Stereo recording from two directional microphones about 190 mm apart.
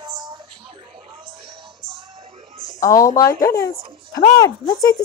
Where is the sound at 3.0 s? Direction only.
15° left (ahead or behind).